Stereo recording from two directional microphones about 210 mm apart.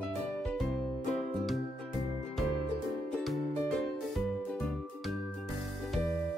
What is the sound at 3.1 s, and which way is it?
Music, centre (ahead or behind).